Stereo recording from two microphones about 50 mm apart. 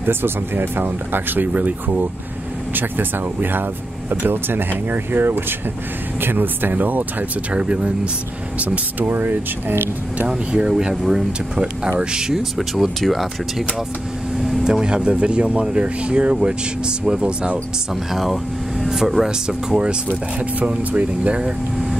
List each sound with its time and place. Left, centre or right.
0.0 s speech: right
7.5 s speech: right
9.0 s speech: right
10.2 s speech: right
11.0 s speech: centre
14.6 s speech: centre
18.1 s speech: centre
20.1 s speech: right